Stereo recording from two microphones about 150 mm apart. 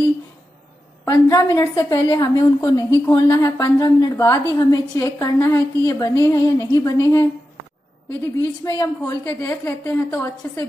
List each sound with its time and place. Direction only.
1.0 s a woman's voice: 20° left (ahead or behind)